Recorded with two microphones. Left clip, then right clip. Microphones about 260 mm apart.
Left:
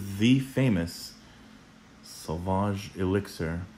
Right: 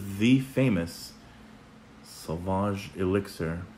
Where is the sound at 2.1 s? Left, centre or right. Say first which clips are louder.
Even; left.